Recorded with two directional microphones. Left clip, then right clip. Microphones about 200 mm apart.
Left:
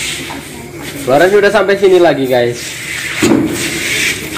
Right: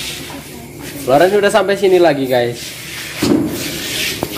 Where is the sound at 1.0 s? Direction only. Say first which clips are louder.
Left 3 dB; 5° right (ahead or behind).